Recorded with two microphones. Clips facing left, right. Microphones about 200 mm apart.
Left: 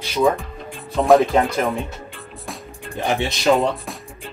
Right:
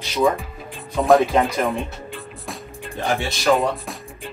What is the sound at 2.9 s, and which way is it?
Speech, 20° left (ahead or behind).